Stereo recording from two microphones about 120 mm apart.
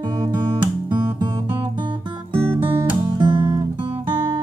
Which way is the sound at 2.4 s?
20° right (ahead or behind).